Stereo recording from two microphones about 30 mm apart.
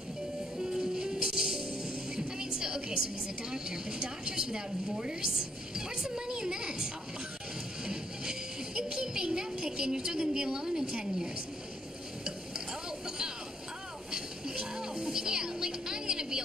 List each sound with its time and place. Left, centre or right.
0.6 s music: right
3.5 s a woman's voice: right
7.8 s a sound: right
14.1 s music: right